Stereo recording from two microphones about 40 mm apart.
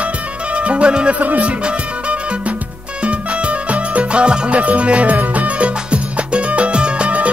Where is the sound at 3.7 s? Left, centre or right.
Right.